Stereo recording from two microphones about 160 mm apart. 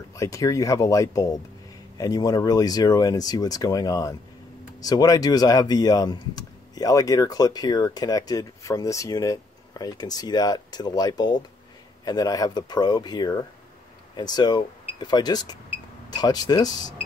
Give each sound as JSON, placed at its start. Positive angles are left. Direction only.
{"t": 0.1, "sound": "speech", "side_deg": 20}